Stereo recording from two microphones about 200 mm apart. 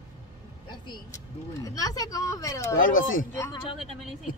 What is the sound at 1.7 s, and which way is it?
Speech, 15° left (ahead or behind).